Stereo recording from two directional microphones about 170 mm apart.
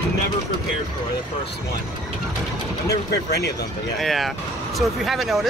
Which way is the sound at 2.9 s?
70° left (ahead or behind).